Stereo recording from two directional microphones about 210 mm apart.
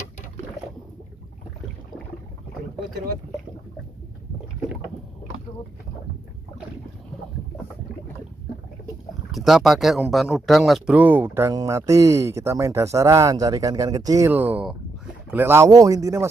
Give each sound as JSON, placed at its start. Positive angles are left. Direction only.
{"t": 9.3, "sound": "speech", "side_deg": 0}